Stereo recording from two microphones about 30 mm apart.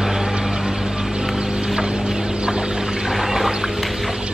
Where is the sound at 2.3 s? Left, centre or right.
Right.